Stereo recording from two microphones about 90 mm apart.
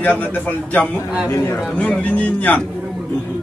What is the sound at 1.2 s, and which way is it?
Speech, 30° left (ahead or behind).